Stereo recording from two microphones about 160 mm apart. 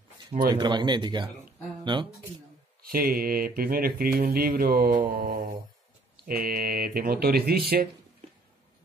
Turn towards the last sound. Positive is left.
turn(degrees=-75)  # may be behind; listen again after turning